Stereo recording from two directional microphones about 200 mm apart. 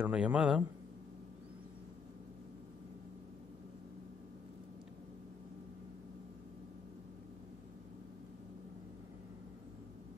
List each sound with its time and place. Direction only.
0.0 s a man's voice: 5° right (ahead or behind)